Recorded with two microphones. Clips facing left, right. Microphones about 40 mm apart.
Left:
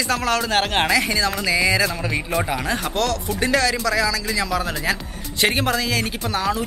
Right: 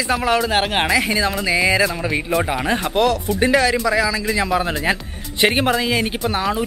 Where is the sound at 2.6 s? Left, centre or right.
Right.